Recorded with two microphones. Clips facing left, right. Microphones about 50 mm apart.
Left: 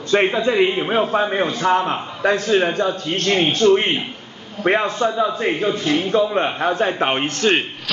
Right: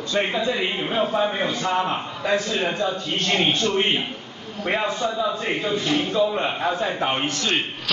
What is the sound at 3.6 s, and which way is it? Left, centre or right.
Speech, left.